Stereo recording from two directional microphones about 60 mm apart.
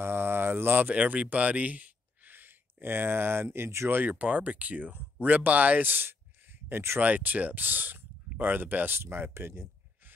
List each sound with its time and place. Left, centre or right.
0.0 s speech: right
3.9 s speech: right
6.7 s speech: right
7.0 s speech: right